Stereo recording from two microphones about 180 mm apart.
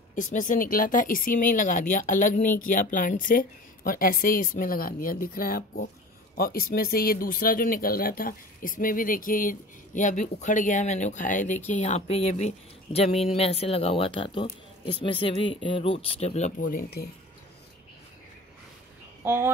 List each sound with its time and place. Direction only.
0.1 s speech: 45° left (ahead or behind)
19.2 s speech: 10° right (ahead or behind)